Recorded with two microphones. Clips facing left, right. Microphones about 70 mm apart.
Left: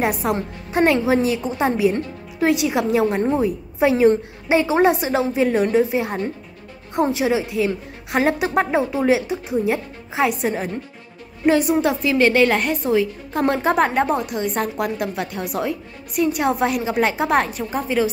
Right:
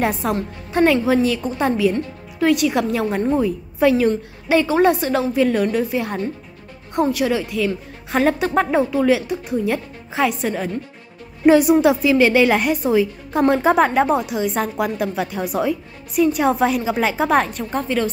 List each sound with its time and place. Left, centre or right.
0.2 s a woman's voice: centre
11.4 s a woman's voice: centre